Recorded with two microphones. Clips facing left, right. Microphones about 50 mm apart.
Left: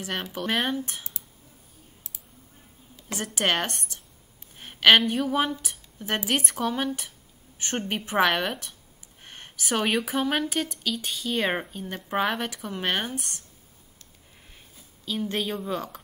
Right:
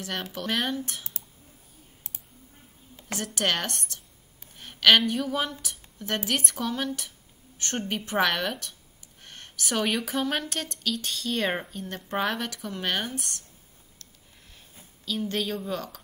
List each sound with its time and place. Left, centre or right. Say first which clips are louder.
0.0 s speech: left 2 dB; centre
3.3 s a woman's voice: left 2 dB; centre
15.0 s speech: left 1 dB; centre